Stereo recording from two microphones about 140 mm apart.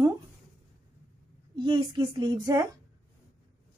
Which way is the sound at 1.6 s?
35° right (ahead or behind).